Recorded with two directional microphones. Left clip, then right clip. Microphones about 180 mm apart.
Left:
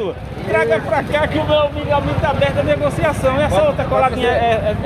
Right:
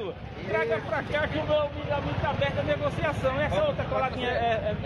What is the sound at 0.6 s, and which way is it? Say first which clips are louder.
Speech: left 12 dB; 20° left (ahead or behind).